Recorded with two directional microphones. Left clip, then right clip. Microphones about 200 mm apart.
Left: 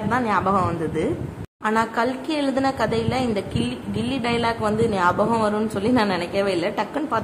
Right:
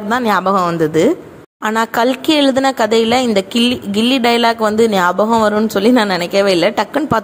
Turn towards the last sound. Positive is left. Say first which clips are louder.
# right 10 dB
turn(degrees=-35)  # may be behind; listen again after turning